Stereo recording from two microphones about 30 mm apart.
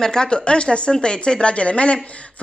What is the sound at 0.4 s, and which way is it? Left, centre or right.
A woman's voice, left.